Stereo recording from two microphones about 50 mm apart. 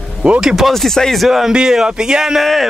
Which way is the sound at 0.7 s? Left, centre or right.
Centre.